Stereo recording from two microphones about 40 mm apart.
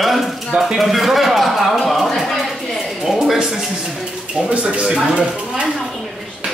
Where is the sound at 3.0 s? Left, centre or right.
Centre.